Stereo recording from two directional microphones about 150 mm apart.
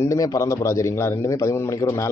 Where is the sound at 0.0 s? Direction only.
20° left (ahead or behind).